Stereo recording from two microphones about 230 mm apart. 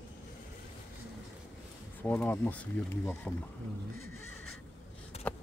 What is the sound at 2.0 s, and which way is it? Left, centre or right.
Speech, centre.